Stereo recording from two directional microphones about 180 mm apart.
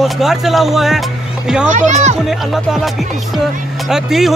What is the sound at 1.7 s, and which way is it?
Speech, 40° right (ahead or behind).